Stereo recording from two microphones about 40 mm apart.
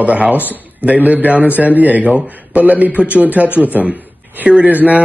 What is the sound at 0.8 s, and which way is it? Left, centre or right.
Speech, right.